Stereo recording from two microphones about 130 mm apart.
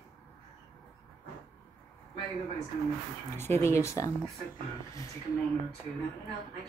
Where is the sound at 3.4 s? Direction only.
20° left (ahead or behind).